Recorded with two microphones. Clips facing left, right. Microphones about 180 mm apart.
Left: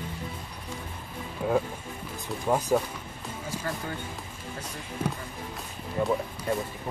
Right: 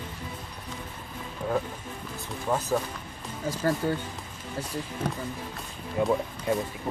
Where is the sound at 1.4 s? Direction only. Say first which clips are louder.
Left 3 dB; 10° left (ahead or behind).